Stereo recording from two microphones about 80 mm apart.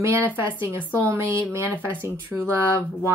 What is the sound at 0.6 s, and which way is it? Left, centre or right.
A woman's voice, right.